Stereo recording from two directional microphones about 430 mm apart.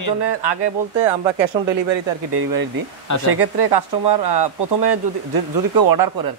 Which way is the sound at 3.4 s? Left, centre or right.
Right.